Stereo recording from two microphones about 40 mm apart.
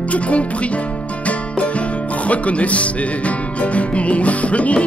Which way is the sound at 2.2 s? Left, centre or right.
Left.